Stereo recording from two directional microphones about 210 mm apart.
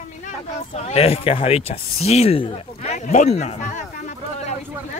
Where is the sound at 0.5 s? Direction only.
30° left (ahead or behind).